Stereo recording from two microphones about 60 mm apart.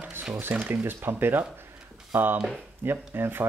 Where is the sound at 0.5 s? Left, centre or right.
Right.